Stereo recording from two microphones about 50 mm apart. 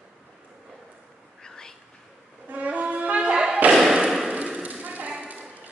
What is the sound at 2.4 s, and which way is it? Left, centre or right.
Wind instrument, right.